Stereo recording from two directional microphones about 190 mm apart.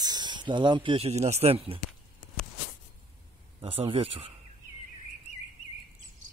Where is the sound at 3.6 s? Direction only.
30° right (ahead or behind).